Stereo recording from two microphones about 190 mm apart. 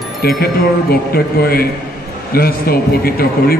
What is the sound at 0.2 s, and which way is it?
A man's voice, 50° left (ahead or behind).